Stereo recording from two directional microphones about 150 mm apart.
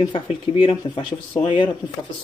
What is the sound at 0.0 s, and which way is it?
Speech, 35° left (ahead or behind).